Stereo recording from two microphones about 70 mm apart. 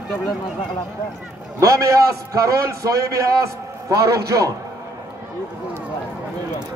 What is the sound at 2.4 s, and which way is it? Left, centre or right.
A man's voice, right.